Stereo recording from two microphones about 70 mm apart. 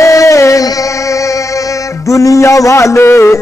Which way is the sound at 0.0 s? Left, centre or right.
Left.